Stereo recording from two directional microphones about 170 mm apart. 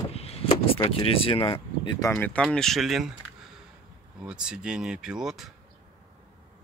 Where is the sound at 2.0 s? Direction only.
10° left (ahead or behind).